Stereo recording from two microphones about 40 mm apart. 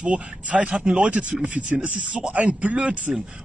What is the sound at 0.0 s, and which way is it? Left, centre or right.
Speech, right.